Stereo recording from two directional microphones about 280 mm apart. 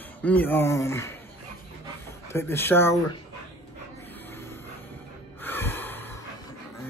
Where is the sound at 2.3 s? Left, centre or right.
Centre.